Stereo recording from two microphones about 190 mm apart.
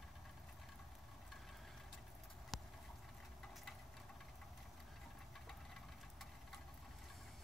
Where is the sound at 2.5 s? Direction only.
Centre (ahead or behind).